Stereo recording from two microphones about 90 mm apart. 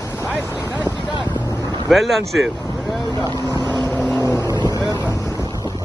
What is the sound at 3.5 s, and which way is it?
Boat, 45° right (ahead or behind).